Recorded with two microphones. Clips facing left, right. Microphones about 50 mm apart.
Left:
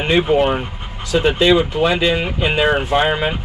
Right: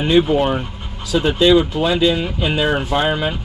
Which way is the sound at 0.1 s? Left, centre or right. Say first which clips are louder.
Even; left.